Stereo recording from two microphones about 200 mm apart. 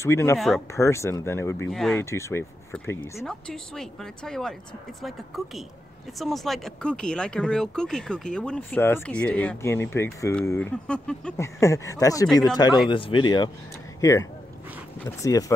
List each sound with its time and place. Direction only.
0.0 s speech: 15° left (ahead or behind)
1.7 s speech: centre (ahead or behind)
2.0 s speech: 15° left (ahead or behind)
11.4 s speech: 15° left (ahead or behind)